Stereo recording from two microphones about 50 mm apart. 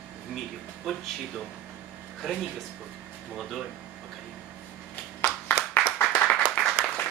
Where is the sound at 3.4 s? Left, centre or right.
Centre.